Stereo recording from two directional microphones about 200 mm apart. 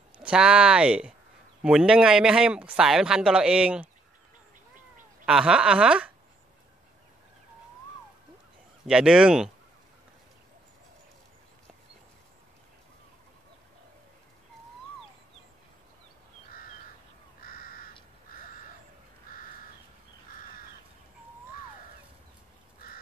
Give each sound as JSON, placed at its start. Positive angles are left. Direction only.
{"t": 0.2, "sound": "speech", "side_deg": -5}
{"t": 5.2, "sound": "speech", "side_deg": -5}
{"t": 8.8, "sound": "speech", "side_deg": -5}
{"t": 17.4, "sound": "crow", "side_deg": 45}